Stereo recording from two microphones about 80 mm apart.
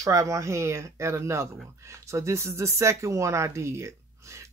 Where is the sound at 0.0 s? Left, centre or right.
Right.